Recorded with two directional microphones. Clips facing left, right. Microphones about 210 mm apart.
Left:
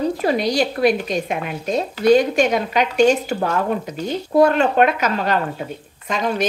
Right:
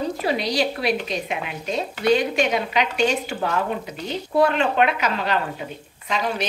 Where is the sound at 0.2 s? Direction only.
45° left (ahead or behind).